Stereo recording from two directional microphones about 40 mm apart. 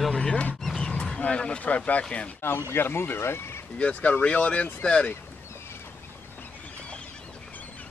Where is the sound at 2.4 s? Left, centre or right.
Left.